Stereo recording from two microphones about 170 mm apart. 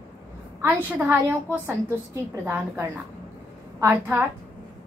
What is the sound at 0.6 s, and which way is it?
A woman's voice, 10° right (ahead or behind).